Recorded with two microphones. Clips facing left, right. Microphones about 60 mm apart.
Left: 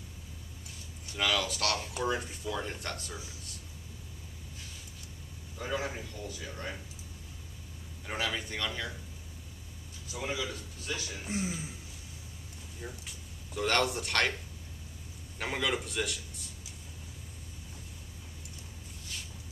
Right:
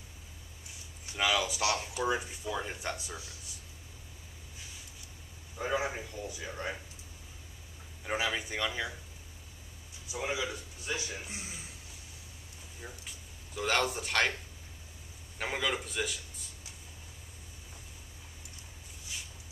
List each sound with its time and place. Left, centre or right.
1.1 s speech: centre
5.6 s speech: centre
8.0 s speech: centre
10.0 s a man's voice: centre
12.8 s a man's voice: centre